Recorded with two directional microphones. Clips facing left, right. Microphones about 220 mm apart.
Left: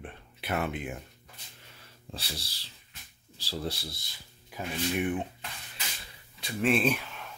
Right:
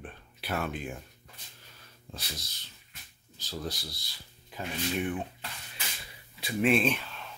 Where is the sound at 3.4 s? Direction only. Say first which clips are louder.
Left 2 dB; 30° left (ahead or behind).